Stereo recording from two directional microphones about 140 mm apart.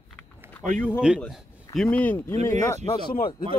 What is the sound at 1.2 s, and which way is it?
Speech, 5° left (ahead or behind).